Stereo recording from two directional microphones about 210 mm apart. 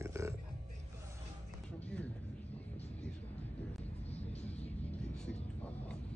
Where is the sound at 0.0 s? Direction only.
15° right (ahead or behind).